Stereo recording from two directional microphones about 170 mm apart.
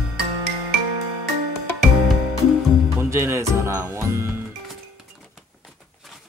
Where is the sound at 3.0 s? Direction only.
15° right (ahead or behind).